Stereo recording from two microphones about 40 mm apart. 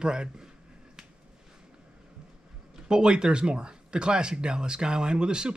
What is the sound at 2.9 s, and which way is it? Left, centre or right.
Speech, centre.